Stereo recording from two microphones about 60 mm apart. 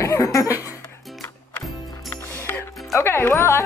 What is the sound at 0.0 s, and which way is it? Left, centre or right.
Laughter, left.